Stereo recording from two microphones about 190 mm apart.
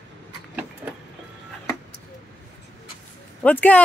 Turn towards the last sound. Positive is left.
turn(degrees=10)  # may be behind; listen again after turning